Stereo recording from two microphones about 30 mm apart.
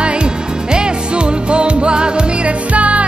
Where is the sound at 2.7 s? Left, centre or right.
Right.